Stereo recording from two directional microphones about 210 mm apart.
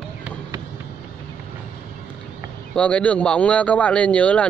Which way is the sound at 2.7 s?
5° left (ahead or behind).